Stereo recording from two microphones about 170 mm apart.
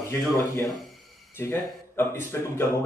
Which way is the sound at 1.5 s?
15° left (ahead or behind).